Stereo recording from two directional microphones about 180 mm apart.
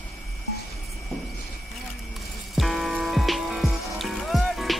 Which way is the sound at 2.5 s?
Centre (ahead or behind).